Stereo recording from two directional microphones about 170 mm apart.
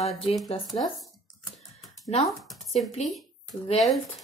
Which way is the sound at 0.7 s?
Centre (ahead or behind).